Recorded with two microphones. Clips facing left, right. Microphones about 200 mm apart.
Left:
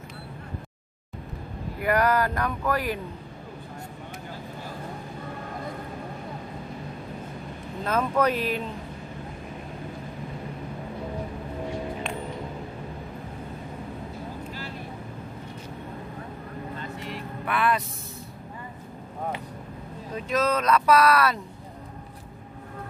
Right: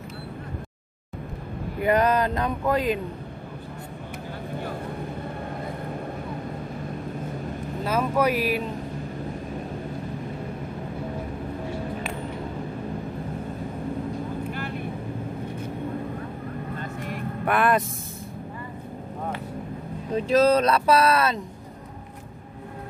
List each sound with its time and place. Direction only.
1.8 s speech: 20° right (ahead or behind)
7.8 s speech: 5° right (ahead or behind)
14.5 s vehicle: 55° right (ahead or behind)
16.7 s vehicle: 50° right (ahead or behind)
20.2 s speech: 30° right (ahead or behind)